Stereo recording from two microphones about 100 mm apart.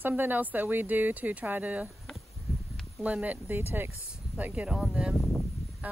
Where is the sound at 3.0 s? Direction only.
15° right (ahead or behind).